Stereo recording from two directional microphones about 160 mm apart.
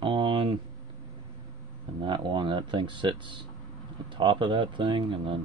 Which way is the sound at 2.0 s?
30° right (ahead or behind).